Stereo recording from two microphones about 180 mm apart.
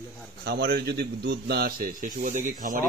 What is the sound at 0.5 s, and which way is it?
Speech, 60° right (ahead or behind).